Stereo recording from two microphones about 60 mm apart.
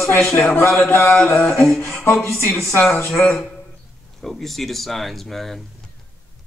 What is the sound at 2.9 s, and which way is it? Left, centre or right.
Mantra, left.